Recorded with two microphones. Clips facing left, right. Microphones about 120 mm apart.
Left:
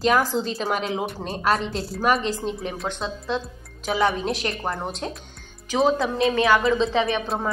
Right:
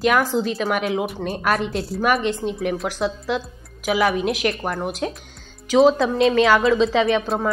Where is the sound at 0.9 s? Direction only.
Centre (ahead or behind).